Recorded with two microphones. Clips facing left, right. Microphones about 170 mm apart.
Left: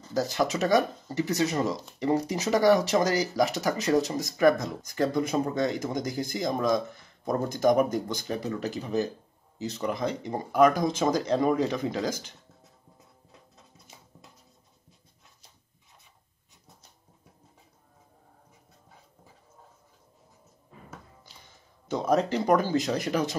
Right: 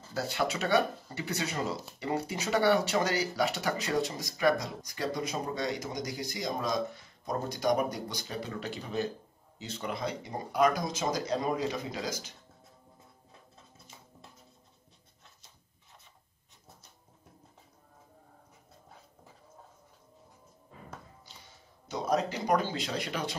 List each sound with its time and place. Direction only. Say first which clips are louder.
0.1 s speech: left 5 dB; 40° left (ahead or behind)
21.9 s speech: left 5 dB; 50° left (ahead or behind)